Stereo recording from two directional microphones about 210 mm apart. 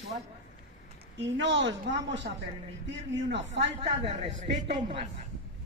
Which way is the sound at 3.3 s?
60° right (ahead or behind).